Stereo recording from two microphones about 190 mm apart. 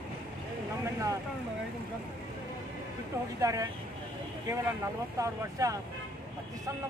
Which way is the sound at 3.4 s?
15° right (ahead or behind).